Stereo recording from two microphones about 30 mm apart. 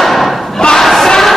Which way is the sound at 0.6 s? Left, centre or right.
Left.